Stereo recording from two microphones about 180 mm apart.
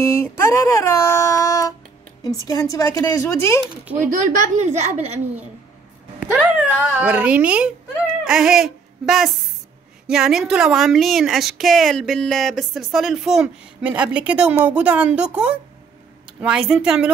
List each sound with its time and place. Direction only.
0.1 s a sound: 15° left (ahead or behind)
2.2 s a woman's voice: 20° left (ahead or behind)
4.1 s a woman's voice: 45° right (ahead or behind)
6.5 s a child's voice: 10° right (ahead or behind)